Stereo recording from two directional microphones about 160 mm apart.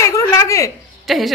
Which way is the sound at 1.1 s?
Centre (ahead or behind).